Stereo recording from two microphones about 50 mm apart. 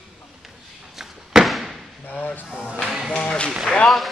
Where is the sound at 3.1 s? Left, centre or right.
Centre.